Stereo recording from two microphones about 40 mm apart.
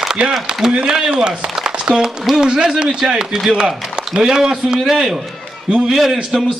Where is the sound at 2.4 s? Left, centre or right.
Centre.